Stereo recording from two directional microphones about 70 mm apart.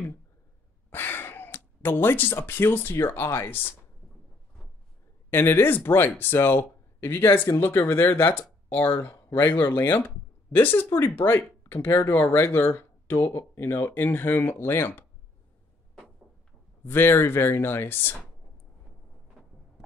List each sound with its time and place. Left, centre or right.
0.8 s speech: left
5.3 s speech: left
16.8 s speech: left